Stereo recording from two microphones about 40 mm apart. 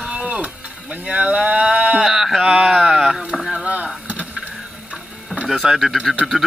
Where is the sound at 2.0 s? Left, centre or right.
Centre.